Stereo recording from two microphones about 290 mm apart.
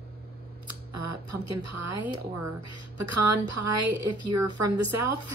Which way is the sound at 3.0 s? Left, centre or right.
Right.